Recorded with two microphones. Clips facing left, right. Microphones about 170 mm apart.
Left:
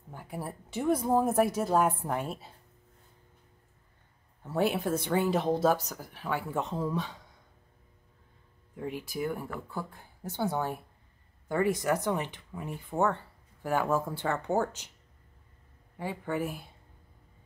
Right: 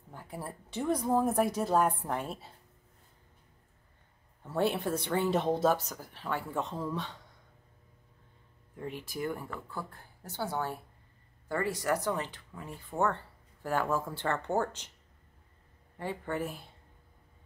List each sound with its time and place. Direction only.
0.1 s a woman's voice: 5° left (ahead or behind)
4.5 s a woman's voice: 5° left (ahead or behind)
8.7 s speech: 10° left (ahead or behind)
16.0 s speech: 10° left (ahead or behind)